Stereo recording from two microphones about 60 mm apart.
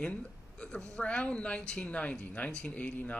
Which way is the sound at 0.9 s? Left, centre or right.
Centre.